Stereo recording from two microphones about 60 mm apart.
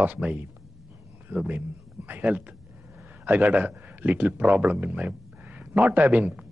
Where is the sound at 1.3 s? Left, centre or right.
Right.